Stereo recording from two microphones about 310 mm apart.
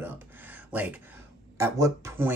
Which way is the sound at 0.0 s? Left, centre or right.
Centre.